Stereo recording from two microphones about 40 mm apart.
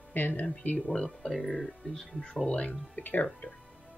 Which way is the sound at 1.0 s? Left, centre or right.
Centre.